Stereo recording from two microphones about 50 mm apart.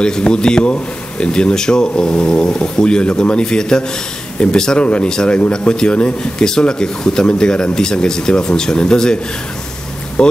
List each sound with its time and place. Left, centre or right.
0.0 s speech: centre